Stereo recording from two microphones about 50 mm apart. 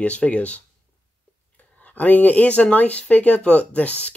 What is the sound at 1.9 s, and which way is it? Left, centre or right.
Speech, left.